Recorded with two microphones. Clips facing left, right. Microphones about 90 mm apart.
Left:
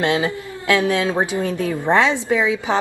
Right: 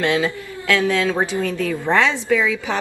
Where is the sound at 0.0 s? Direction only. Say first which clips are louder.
Even; 20° left (ahead or behind).